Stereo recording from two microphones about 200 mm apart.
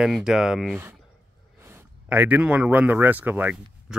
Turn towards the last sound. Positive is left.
turn(degrees=-5)  # may be behind; listen again after turning